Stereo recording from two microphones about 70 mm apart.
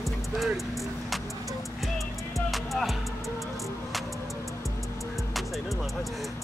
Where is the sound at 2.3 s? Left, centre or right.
Centre.